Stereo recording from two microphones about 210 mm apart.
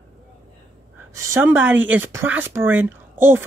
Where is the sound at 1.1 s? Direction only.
10° right (ahead or behind).